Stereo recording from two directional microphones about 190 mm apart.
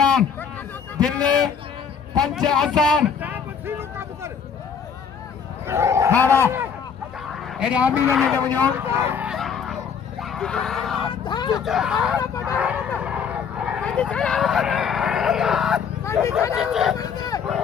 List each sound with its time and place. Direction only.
0.0 s a sound: 5° left (ahead or behind)
1.0 s a man's voice: 5° left (ahead or behind)
3.2 s a sound: 10° right (ahead or behind)
5.7 s speech: 15° right (ahead or behind)
8.4 s speech: 10° left (ahead or behind)
8.7 s speech: 15° right (ahead or behind)
11.2 s speech: 25° left (ahead or behind)
11.6 s speech: centre (ahead or behind)
12.5 s a sound: 5° right (ahead or behind)
13.0 s vehicle: 5° right (ahead or behind)
13.8 s speech: 5° left (ahead or behind)
16.0 s hubbub: 15° left (ahead or behind)
16.5 s speech: centre (ahead or behind)